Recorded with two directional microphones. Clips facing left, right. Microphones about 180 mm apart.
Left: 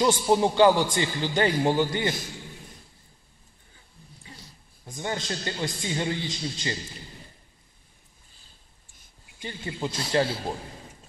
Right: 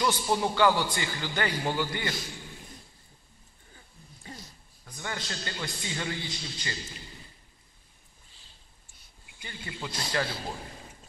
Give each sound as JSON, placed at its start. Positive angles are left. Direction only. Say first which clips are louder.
{"t": 0.0, "sound": "a man's voice", "louder": "left 6 dB", "side_deg": 25}
{"t": 4.3, "sound": "a sound", "louder": "right 4 dB", "side_deg": -45}
{"t": 4.9, "sound": "a man's voice", "louder": "left 6 dB", "side_deg": 20}
{"t": 9.4, "sound": "a man's voice", "louder": "left 7 dB", "side_deg": 25}